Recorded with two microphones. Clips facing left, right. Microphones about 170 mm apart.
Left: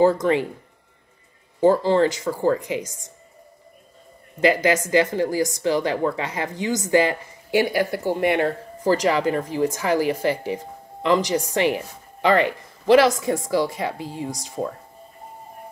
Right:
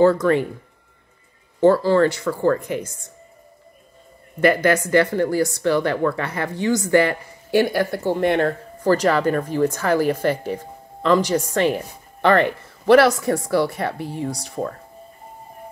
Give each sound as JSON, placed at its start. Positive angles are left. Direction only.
{"t": 0.0, "sound": "speech", "side_deg": 15}
{"t": 1.6, "sound": "speech", "side_deg": 20}
{"t": 4.8, "sound": "speech", "side_deg": 20}